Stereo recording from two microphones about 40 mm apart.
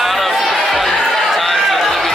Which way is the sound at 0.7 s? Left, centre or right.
Centre.